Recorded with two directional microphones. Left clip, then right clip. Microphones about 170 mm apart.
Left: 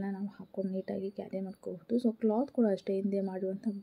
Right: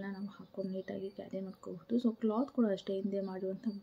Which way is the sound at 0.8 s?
20° left (ahead or behind).